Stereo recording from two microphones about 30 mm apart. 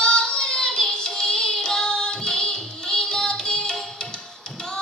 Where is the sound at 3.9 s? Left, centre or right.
Left.